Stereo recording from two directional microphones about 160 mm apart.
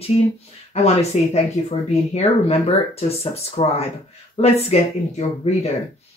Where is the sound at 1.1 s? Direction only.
45° left (ahead or behind).